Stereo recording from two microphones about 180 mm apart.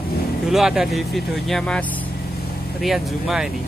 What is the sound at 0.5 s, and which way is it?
Speech, centre (ahead or behind).